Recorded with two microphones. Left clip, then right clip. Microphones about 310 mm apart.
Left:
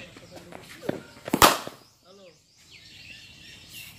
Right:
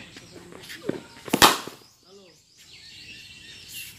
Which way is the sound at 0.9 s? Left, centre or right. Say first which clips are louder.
Even; left.